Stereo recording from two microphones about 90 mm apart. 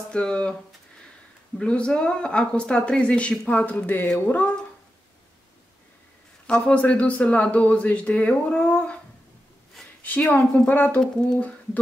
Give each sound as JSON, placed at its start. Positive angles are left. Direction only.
{"t": 0.1, "sound": "speech", "side_deg": 10}
{"t": 1.6, "sound": "speech", "side_deg": 10}
{"t": 6.4, "sound": "speech", "side_deg": 15}
{"t": 10.0, "sound": "speech", "side_deg": 15}